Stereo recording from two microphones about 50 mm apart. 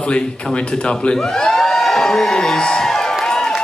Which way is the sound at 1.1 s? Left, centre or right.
Centre.